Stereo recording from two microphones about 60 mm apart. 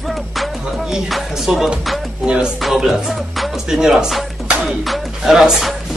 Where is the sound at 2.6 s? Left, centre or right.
Centre.